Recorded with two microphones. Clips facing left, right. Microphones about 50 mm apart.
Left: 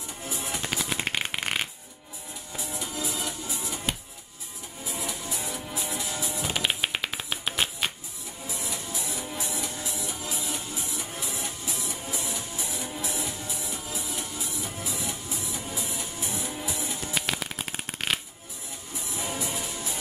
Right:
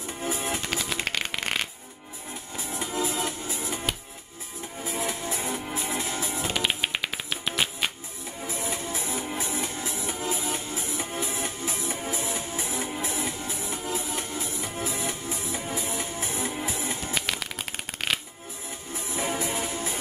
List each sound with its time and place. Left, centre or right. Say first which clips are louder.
0.2 s music: right 5 dB; right
0.6 s music: even; centre
2.5 s music: right 4 dB; right
4.8 s music: right 4 dB; right
6.4 s music: even; centre
8.5 s music: right 4 dB; right
17.1 s shuffling cards: even; centre
19.1 s music: right 4 dB; right